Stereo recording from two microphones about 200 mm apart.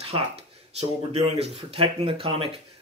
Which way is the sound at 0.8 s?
30° right (ahead or behind).